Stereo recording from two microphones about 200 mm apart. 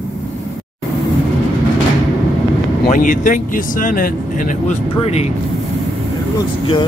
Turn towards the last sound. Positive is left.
turn(degrees=35)  # may be behind; listen again after turning